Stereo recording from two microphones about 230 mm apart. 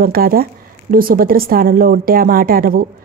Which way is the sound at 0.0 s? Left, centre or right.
Right.